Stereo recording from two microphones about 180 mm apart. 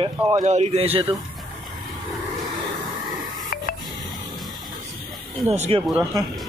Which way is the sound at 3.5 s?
55° left (ahead or behind).